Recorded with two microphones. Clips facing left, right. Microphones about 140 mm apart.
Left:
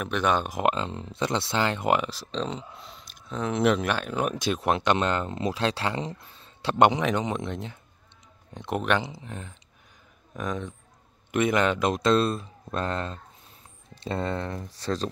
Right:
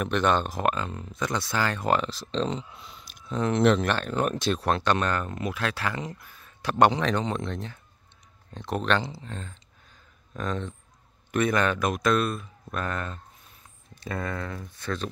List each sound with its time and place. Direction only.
0.0 s speech: 5° left (ahead or behind); by 15.0 s 35° left (ahead or behind)